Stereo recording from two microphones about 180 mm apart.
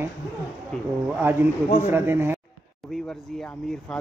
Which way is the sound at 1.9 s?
10° right (ahead or behind).